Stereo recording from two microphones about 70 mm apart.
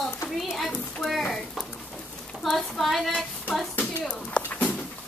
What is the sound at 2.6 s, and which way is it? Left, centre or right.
Speech, centre.